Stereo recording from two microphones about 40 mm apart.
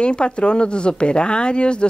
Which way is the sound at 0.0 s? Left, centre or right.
Left.